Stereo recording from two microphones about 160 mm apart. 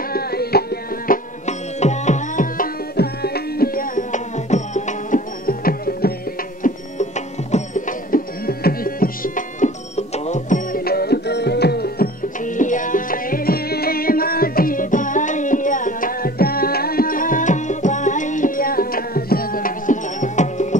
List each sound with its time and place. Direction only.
0.1 s music: 75° left (ahead or behind)
6.6 s music: 45° left (ahead or behind); by 12.1 s 85° left
12.4 s music: 55° left (ahead or behind)